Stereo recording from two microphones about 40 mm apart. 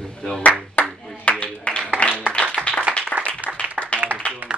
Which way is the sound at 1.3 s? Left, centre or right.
Left.